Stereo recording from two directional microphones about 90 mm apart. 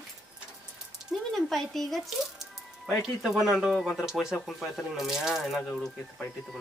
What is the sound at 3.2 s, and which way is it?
Speech, centre (ahead or behind).